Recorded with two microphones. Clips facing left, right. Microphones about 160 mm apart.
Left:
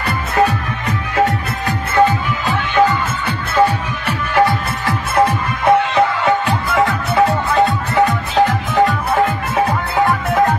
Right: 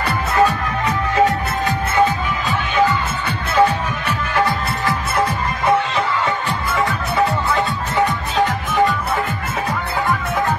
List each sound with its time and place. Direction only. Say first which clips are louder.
5.1 s music: left 4 dB; 65° left (ahead or behind)